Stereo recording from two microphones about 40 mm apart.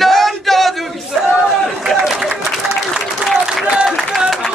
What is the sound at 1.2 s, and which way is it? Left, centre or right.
Crowd, right.